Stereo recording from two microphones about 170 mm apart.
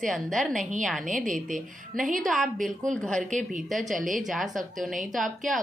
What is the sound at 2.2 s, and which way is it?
A woman's voice, centre (ahead or behind).